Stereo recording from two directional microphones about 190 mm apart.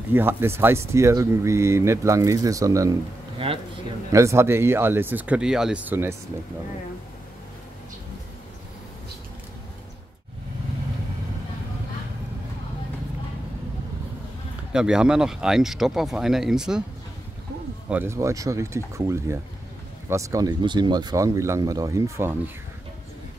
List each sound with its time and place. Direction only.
0.1 s speech: 10° right (ahead or behind)
3.4 s speech: 30° right (ahead or behind)
4.1 s speech: 15° right (ahead or behind)
14.7 s speech: 5° right (ahead or behind)
17.8 s speech: 10° right (ahead or behind)